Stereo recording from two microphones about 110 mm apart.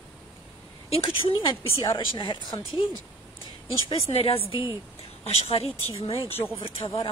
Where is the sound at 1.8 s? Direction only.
45° left (ahead or behind).